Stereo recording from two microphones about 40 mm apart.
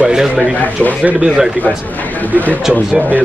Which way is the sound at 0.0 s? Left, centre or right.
Centre.